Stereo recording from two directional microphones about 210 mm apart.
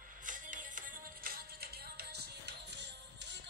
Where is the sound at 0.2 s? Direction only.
40° right (ahead or behind).